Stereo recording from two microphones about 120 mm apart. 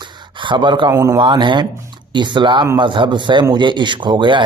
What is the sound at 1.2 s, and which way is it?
Speech, 40° right (ahead or behind).